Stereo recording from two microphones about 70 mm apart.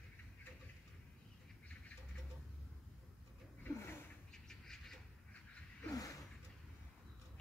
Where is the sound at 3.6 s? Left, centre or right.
Left.